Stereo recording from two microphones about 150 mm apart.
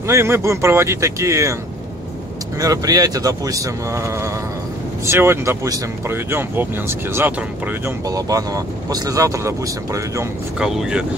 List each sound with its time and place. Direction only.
0.0 s speech: 15° right (ahead or behind)
2.6 s speech: 25° right (ahead or behind)
10.6 s speech: 5° right (ahead or behind)